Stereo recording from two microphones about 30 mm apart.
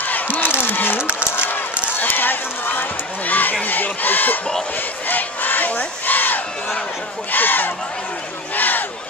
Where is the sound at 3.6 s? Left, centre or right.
Left.